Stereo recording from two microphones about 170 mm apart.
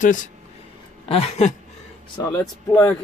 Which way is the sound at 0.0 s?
50° left (ahead or behind).